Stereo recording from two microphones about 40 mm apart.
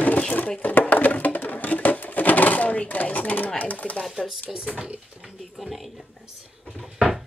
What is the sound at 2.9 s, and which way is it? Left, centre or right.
Speech, left.